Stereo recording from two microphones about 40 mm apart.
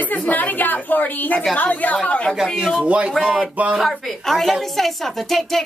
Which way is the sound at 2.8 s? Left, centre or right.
Right.